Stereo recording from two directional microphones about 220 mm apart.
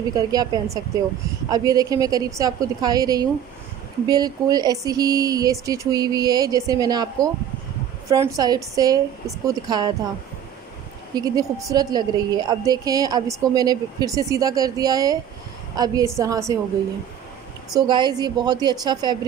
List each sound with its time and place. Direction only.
0.1 s a woman's voice: 15° right (ahead or behind)
11.1 s a woman's voice: 15° right (ahead or behind)
17.7 s a woman's voice: 20° right (ahead or behind)